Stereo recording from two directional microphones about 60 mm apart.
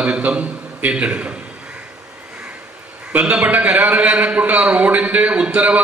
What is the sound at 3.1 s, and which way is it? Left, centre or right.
A man's voice, right.